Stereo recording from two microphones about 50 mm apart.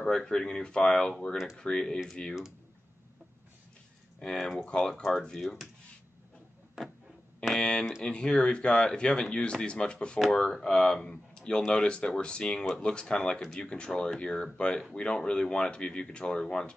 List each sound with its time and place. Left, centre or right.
0.0 s speech: centre
4.2 s speech: centre
6.8 s printer: centre
7.5 s speech: centre